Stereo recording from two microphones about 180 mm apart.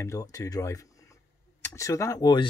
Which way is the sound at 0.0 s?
15° left (ahead or behind).